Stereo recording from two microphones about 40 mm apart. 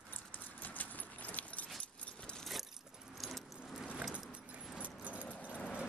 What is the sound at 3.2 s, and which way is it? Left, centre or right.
Keys jangling, centre.